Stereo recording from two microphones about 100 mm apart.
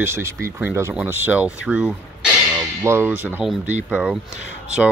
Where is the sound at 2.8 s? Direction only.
25° right (ahead or behind).